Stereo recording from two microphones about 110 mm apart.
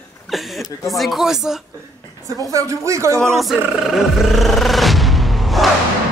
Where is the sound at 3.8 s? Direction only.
5° right (ahead or behind).